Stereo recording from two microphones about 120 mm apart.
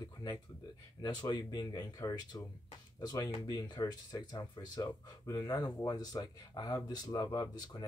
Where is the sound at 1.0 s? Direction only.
35° left (ahead or behind).